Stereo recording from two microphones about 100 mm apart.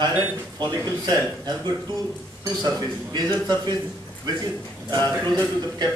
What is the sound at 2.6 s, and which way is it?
A man's voice, 45° right (ahead or behind).